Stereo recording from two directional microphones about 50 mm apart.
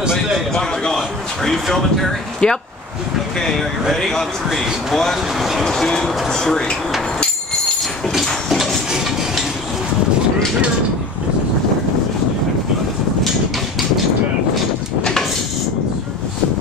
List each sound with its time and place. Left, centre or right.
0.5 s a man's voice: centre
2.4 s speech: centre
3.8 s a man's voice: centre
5.7 s speech: centre
8.5 s a sound: centre